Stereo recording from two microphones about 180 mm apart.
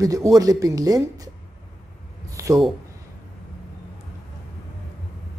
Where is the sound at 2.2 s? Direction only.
15° right (ahead or behind).